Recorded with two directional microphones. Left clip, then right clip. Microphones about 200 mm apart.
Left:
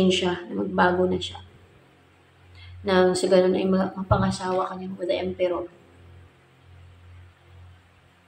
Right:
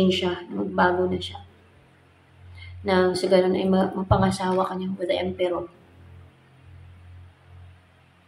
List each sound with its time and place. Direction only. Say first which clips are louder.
0.0 s speech: left 1 dB; centre (ahead or behind)
2.8 s a woman's voice: left 1 dB; centre (ahead or behind)